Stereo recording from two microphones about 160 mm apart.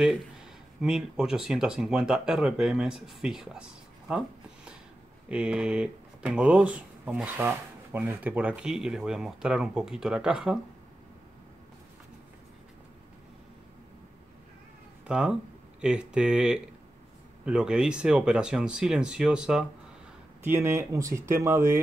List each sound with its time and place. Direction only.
0.7 s speech: 5° right (ahead or behind)
4.1 s a sound: 5° right (ahead or behind)
5.3 s speech: 5° right (ahead or behind)
15.0 s speech: 5° right (ahead or behind)
20.4 s speech: 15° right (ahead or behind)